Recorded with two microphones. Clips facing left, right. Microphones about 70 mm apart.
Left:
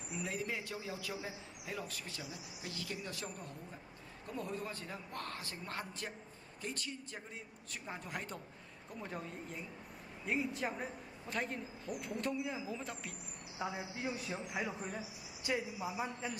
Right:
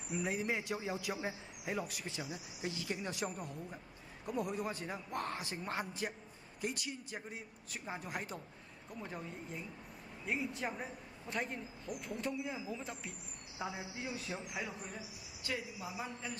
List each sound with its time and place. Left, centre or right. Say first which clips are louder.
0.2 s a man's voice: right 3 dB; right; by 14.5 s centre
15.4 s speech: left 4 dB; centre